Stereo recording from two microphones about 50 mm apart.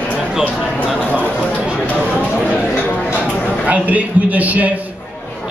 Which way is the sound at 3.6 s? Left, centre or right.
Right.